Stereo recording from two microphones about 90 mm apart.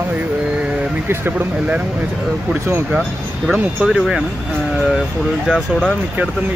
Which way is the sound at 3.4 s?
5° right (ahead or behind).